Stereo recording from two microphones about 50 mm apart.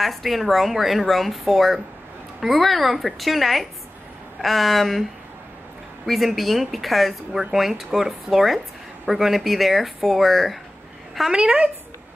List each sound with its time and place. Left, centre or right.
0.0 s speech: centre
6.0 s speech: centre
11.3 s speech: right